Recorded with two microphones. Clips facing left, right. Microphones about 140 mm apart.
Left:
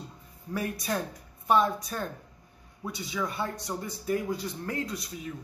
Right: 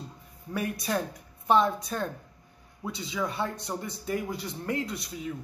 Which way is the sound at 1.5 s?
25° right (ahead or behind).